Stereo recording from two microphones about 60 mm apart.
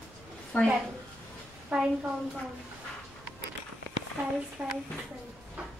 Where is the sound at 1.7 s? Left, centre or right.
Centre.